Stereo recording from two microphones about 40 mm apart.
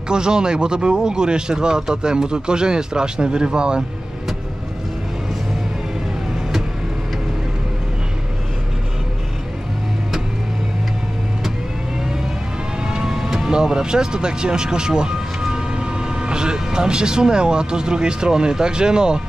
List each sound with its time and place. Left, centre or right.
0.1 s speech: right
12.8 s vehicle: centre
13.5 s speech: centre